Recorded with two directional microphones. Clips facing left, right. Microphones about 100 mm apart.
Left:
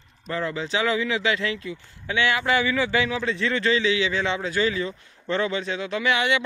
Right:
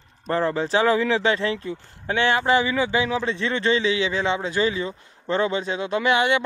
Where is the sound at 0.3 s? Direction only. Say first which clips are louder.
Right 5 dB; 35° right (ahead or behind).